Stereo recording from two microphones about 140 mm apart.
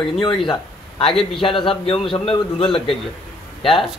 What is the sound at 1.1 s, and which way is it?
Speech, 5° left (ahead or behind).